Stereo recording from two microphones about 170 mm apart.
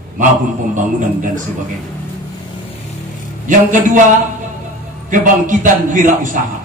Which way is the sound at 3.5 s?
50° right (ahead or behind).